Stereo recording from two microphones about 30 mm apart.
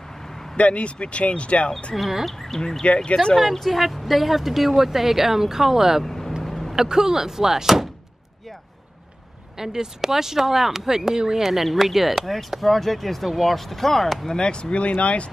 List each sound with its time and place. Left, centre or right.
0.2 s vehicle: centre
0.6 s speech: left
2.0 s speech: centre
2.2 s speech: centre
2.8 s speech: left
3.5 s speech: centre
6.0 s vehicle: centre
6.7 s speech: centre
9.6 s speech: right
11.6 s speech: centre
14.4 s speech: left